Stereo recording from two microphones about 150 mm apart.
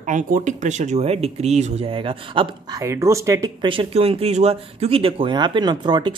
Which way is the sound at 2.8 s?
20° right (ahead or behind).